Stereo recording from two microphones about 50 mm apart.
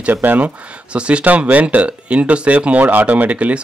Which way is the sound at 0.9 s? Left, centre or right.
Right.